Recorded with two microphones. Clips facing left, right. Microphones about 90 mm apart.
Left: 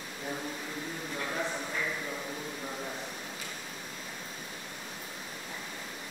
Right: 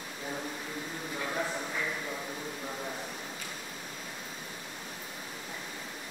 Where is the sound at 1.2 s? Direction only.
5° right (ahead or behind).